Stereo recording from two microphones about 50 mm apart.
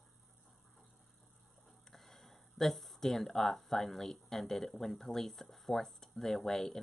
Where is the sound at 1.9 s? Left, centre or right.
Centre.